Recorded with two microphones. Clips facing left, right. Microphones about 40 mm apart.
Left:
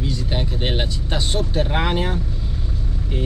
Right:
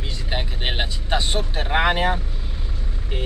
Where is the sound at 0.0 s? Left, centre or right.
Centre.